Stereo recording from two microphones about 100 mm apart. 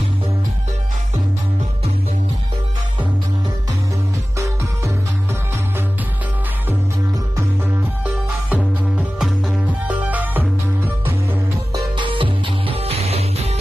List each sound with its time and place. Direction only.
8.0 s music: 15° right (ahead or behind)
12.0 s music: 55° right (ahead or behind); by 13.6 s 90° right